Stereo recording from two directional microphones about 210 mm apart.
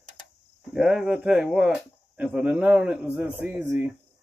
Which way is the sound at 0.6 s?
Centre (ahead or behind).